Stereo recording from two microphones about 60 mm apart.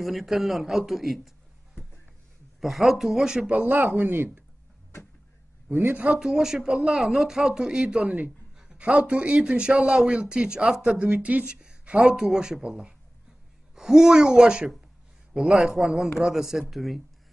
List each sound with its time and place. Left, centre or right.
0.0 s speech: centre
2.6 s speech: centre
3.4 s speech: right
5.7 s speech: right
6.0 s a man's voice: centre
11.0 s a woman's voice: right
11.4 s a man's voice: centre